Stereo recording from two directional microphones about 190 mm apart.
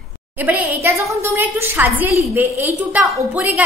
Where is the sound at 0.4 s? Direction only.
10° right (ahead or behind).